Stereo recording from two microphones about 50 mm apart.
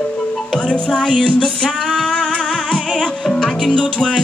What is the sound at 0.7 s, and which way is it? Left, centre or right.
Music, centre.